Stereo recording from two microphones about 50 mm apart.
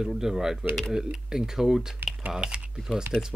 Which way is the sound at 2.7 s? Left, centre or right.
Centre.